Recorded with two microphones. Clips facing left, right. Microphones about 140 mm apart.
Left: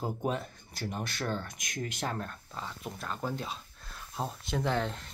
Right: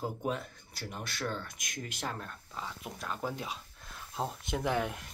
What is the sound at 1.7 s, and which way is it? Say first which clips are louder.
Speech: left 4 dB; 5° right (ahead or behind).